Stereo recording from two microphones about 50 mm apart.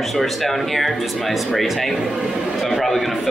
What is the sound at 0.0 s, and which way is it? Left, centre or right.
Speech, centre.